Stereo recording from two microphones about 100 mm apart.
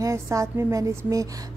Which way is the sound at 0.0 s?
30° right (ahead or behind).